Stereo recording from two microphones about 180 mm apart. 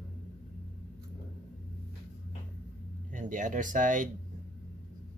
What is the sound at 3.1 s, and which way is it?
Speech, 45° right (ahead or behind).